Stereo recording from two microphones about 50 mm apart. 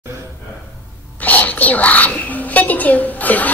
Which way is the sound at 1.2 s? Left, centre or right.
Left.